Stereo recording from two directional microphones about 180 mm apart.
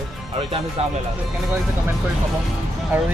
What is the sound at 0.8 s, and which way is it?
Speech, 35° right (ahead or behind).